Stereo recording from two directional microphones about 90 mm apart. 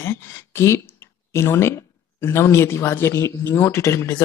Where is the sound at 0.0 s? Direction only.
30° left (ahead or behind).